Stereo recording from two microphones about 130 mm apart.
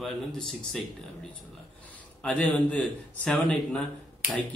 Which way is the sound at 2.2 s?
10° left (ahead or behind).